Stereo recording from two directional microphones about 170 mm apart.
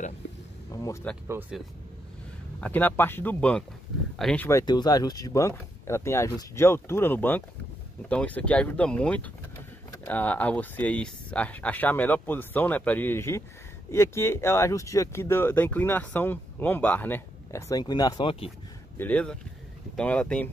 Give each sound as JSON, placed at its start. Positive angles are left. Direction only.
{"t": 0.7, "sound": "a sound", "side_deg": 20}
{"t": 1.2, "sound": "speech", "side_deg": -10}
{"t": 2.6, "sound": "speech", "side_deg": 10}
{"t": 4.5, "sound": "speech", "side_deg": 20}
{"t": 18.9, "sound": "speech", "side_deg": 10}